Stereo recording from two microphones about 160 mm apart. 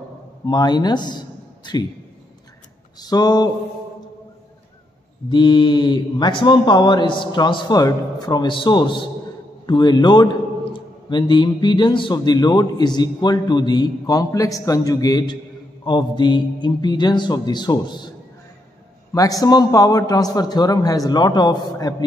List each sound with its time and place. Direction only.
0.5 s a man's voice: 25° left (ahead or behind)
3.0 s a man's voice: 25° left (ahead or behind)
5.3 s a man's voice: 30° left (ahead or behind)
19.1 s a man's voice: 20° left (ahead or behind)